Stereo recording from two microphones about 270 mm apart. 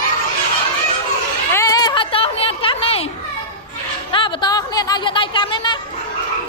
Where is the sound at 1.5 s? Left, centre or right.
Centre.